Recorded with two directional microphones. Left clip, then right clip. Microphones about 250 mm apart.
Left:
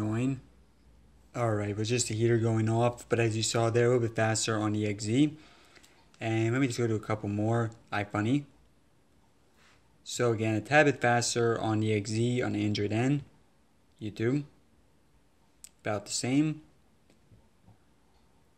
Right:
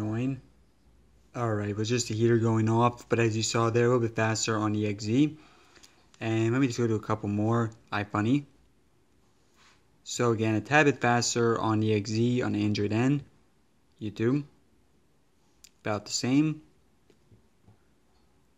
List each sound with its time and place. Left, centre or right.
0.0 s a sound: centre
1.3 s speech: centre
10.0 s speech: right
15.6 s speech: centre